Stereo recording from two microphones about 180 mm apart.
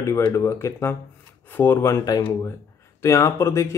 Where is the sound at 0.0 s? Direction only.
15° left (ahead or behind).